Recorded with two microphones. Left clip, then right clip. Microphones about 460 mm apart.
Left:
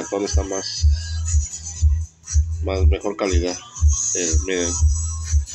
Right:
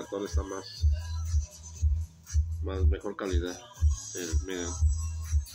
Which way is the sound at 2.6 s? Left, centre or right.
Right.